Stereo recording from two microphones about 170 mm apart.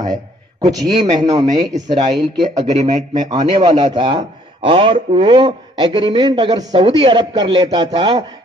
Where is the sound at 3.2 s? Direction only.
25° right (ahead or behind).